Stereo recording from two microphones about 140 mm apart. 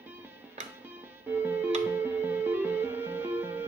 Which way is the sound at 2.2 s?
15° right (ahead or behind).